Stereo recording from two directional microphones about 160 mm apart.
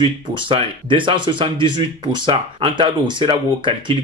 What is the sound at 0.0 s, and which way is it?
Speech, 30° right (ahead or behind).